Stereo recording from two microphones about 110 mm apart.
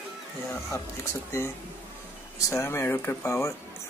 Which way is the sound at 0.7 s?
25° left (ahead or behind).